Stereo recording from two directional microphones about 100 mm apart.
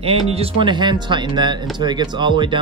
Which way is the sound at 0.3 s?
80° right.